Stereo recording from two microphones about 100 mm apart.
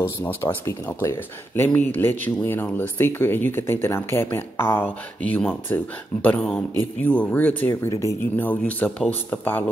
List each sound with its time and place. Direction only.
0.0 s speech: 20° left (ahead or behind)